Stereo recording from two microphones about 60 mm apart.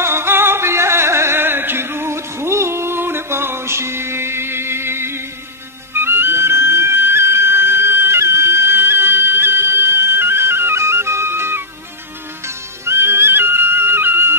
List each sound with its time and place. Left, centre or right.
0.0 s music: right